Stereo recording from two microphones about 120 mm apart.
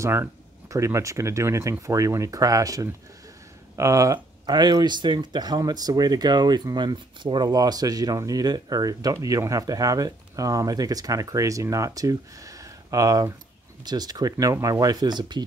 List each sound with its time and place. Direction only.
0.0 s speech: 25° right (ahead or behind)